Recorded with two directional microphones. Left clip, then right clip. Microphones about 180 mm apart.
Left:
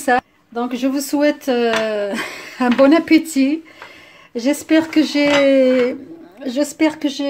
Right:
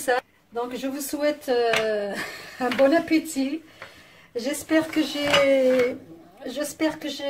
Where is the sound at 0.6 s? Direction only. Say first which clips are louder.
Left 8 dB; 50° left (ahead or behind).